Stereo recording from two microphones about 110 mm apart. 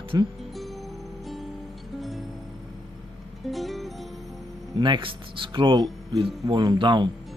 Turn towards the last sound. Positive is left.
turn(degrees=-45)  # may be behind; listen again after turning